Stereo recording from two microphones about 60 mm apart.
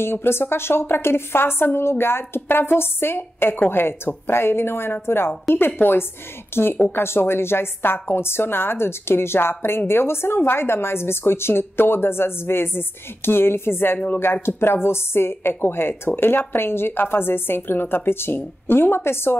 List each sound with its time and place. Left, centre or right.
0.0 s a woman's voice: left
13.9 s speech: left
14.2 s a woman's voice: left